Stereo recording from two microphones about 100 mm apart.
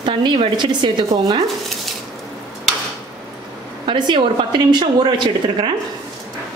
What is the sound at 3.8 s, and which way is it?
Speech, 55° right (ahead or behind).